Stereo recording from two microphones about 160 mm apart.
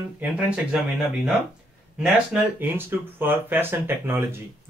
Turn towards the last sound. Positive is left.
turn(degrees=-15)  # may be behind; listen again after turning